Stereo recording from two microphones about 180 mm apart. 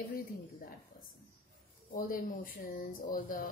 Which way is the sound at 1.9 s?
50° left (ahead or behind).